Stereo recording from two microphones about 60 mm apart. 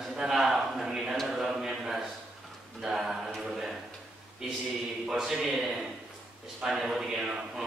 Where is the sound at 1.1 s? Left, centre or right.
Centre.